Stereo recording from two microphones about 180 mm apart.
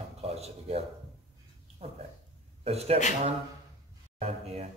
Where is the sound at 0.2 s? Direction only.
35° right (ahead or behind).